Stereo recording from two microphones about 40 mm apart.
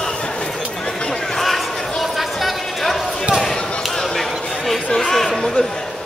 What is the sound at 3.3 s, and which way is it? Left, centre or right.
Basketball bounce, centre.